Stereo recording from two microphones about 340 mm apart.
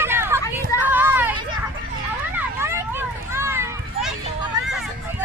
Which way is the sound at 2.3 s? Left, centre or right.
Centre.